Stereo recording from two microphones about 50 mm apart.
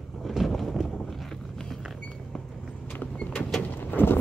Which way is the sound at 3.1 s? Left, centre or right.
Left.